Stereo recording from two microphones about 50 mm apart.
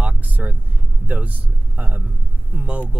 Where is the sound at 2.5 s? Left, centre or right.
Right.